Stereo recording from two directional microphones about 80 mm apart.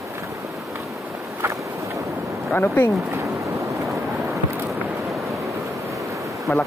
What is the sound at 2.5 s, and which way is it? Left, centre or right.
Speech, left.